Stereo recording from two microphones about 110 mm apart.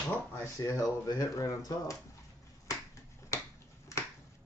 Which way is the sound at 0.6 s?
30° left (ahead or behind).